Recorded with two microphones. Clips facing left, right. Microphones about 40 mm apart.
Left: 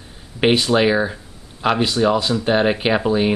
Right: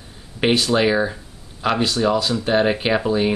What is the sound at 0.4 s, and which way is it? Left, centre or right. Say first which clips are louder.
Speech: left 2 dB; centre.